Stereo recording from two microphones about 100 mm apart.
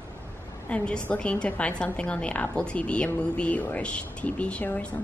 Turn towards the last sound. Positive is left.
turn(degrees=15)  # may be behind; listen again after turning